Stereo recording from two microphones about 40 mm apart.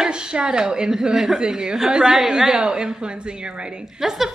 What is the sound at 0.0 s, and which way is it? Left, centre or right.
A woman's voice, right.